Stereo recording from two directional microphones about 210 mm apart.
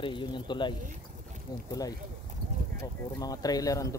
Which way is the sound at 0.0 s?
20° left (ahead or behind).